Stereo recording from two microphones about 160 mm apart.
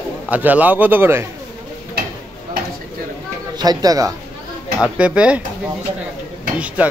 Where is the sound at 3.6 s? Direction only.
25° right (ahead or behind).